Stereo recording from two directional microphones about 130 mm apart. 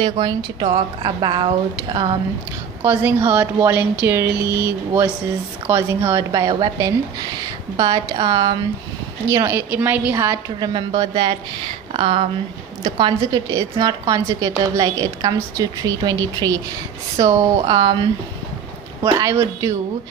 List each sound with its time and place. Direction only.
0.0 s a woman's voice: 35° right (ahead or behind)
2.8 s speech: 15° right (ahead or behind)
5.7 s a woman's voice: 20° right (ahead or behind)
9.3 s speech: 20° right (ahead or behind)
10.1 s a woman's voice: 20° right (ahead or behind)
10.6 s a woman's voice: 35° right (ahead or behind)
19.0 s a woman's voice: 20° right (ahead or behind)